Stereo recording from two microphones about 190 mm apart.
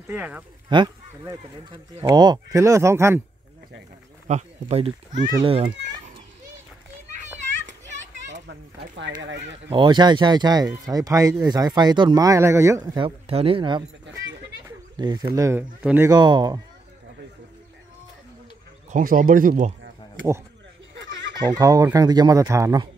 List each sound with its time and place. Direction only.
0.1 s speech: 10° right (ahead or behind)
0.7 s speech: 20° right (ahead or behind)
4.3 s speech: 35° right (ahead or behind)
8.5 s speech: 70° right (ahead or behind)
9.7 s speech: 25° right (ahead or behind)
15.0 s speech: 20° right (ahead or behind)
16.1 s speech: 20° right (ahead or behind)
18.9 s speech: 45° right (ahead or behind)
20.9 s a sound: 75° right (ahead or behind)
21.5 s speech: 20° right (ahead or behind)